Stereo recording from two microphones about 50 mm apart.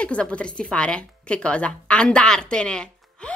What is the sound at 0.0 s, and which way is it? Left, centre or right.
A woman's voice, left.